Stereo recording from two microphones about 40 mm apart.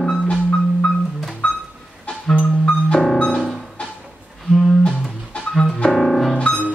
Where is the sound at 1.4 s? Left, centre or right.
Left.